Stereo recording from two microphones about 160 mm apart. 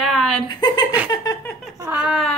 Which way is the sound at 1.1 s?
20° left (ahead or behind).